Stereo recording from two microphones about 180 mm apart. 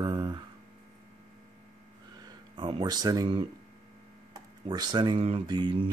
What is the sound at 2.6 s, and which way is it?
Speech, 25° right (ahead or behind).